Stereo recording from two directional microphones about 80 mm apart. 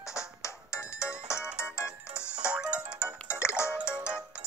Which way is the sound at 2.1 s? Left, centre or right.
Centre.